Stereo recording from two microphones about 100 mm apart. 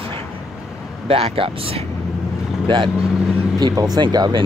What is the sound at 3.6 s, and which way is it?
Speech, 45° right (ahead or behind).